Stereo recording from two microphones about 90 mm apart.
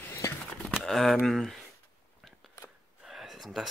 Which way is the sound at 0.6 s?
5° left (ahead or behind).